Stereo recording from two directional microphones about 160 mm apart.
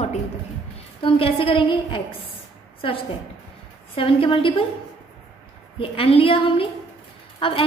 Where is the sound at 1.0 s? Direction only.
35° left (ahead or behind).